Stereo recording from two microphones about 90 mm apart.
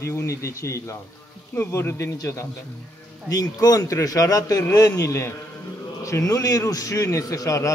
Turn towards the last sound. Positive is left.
turn(degrees=40)  # may be behind; listen again after turning